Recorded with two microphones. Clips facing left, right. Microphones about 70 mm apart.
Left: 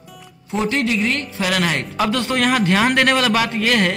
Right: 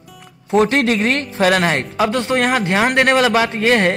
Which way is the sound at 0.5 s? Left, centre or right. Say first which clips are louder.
Right 6 dB; right.